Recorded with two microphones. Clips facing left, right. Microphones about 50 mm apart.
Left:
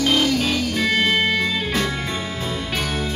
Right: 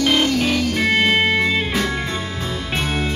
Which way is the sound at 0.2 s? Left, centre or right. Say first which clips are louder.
Right 2 dB; right.